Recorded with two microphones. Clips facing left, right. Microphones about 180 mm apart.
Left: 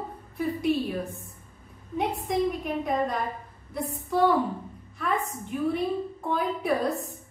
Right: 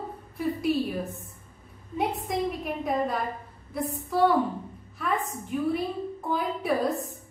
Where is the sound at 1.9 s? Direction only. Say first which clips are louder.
Left 1 dB; centre (ahead or behind).